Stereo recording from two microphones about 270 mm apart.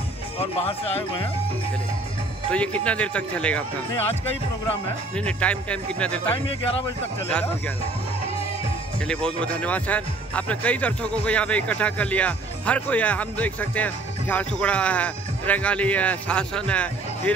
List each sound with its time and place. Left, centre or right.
0.4 s speech: left
2.5 s speech: centre
5.1 s speech: centre
9.0 s speech: centre